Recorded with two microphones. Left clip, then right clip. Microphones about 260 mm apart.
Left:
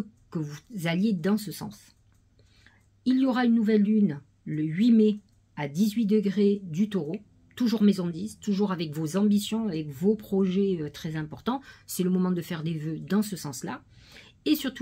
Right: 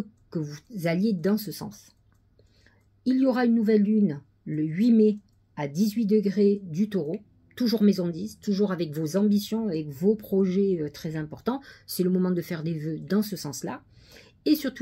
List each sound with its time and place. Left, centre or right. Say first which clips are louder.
0.3 s speech: right 2 dB; centre
3.0 s speech: right 2 dB; centre
13.6 s a sound: right 2 dB; centre